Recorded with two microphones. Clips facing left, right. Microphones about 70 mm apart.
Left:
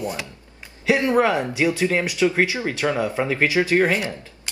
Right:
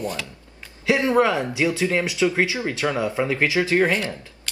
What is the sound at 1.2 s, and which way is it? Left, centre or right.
Speech, left.